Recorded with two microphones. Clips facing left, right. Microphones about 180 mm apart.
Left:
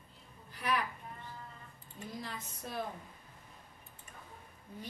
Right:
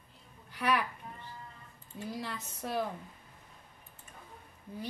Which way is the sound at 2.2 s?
75° right (ahead or behind).